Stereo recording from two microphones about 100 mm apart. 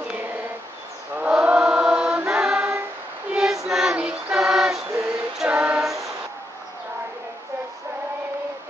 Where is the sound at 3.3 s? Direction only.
5° right (ahead or behind).